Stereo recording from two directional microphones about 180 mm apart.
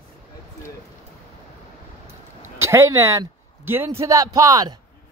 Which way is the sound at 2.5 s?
15° right (ahead or behind).